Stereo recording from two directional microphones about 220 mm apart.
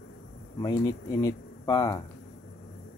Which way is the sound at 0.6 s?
15° left (ahead or behind).